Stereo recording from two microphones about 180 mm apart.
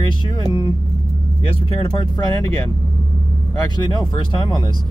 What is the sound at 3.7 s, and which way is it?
Speech, 25° left (ahead or behind).